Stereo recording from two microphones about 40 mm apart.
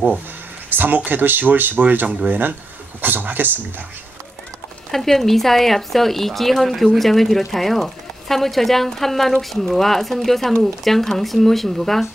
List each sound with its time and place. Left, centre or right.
0.7 s speech: right
4.9 s speech: centre